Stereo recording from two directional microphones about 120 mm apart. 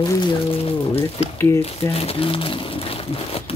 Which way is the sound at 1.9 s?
50° left (ahead or behind).